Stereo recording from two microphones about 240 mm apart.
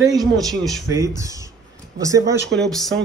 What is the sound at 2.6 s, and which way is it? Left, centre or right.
Speech, centre.